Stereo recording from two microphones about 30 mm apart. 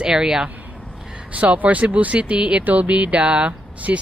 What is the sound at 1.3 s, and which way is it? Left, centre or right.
Speech, right.